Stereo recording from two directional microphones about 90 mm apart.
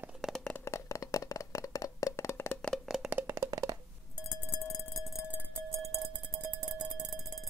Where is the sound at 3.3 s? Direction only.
40° right (ahead or behind).